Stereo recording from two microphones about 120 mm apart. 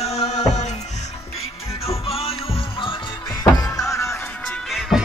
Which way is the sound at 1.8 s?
55° left (ahead or behind).